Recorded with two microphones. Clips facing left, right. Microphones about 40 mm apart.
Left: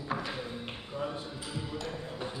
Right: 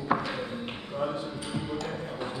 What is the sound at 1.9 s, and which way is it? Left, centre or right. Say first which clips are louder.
Ping: right 4 dB; right.